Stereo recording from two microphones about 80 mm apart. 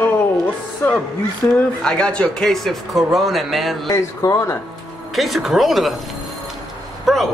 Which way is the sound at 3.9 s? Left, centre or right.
Left.